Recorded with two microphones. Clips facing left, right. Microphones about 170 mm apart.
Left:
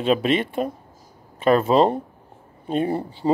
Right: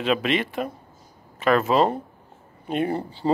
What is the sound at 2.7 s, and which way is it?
Speech, 20° left (ahead or behind).